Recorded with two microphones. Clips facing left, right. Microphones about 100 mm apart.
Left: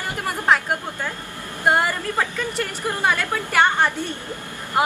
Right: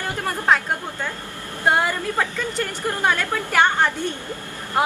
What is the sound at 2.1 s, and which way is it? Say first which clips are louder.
A woman's voice: even; 10° left (ahead or behind).